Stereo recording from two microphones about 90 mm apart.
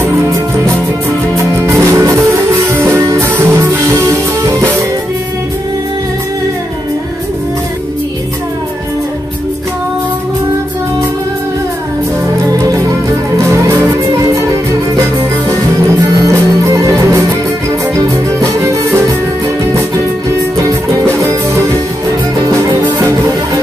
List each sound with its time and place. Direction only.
1.3 s music: 35° right (ahead or behind)
16.3 s music: 35° right (ahead or behind)